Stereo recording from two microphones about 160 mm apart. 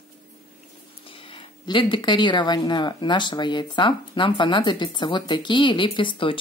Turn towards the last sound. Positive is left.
turn(degrees=30)  # may be behind; listen again after turning